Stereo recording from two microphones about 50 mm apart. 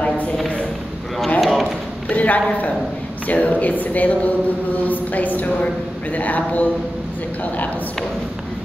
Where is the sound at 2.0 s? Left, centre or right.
Left.